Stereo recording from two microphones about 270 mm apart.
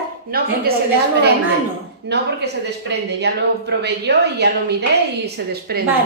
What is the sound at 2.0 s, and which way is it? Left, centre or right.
Speech, right.